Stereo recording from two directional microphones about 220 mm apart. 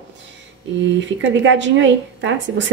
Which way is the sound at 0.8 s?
55° right (ahead or behind).